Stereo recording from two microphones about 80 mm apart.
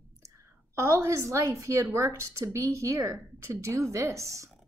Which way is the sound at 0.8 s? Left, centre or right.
Right.